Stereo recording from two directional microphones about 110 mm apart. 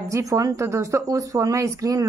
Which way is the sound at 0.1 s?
30° right (ahead or behind).